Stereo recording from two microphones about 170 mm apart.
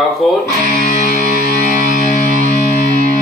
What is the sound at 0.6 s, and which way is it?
Music, 50° left (ahead or behind).